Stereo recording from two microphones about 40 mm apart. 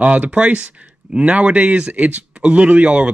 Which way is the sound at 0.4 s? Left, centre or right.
Right.